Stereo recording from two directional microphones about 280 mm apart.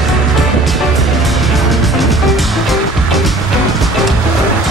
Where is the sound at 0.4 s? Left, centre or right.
Centre.